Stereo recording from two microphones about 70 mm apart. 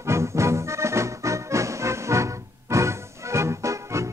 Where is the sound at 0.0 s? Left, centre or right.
Right.